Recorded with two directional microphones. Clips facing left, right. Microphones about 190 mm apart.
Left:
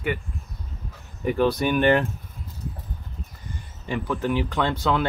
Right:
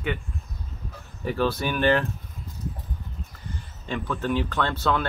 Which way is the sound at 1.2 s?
15° left (ahead or behind).